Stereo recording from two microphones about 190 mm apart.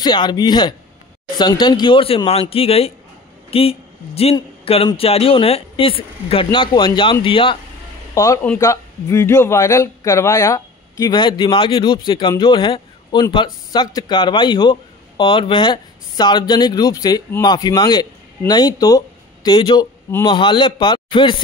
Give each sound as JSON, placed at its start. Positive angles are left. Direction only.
{"t": 0.0, "sound": "speech", "side_deg": 25}
{"t": 8.1, "sound": "speech", "side_deg": 15}